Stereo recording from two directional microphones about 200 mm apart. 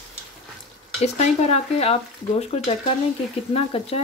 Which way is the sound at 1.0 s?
35° left (ahead or behind).